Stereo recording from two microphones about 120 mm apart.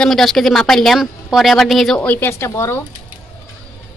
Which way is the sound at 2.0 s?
15° left (ahead or behind).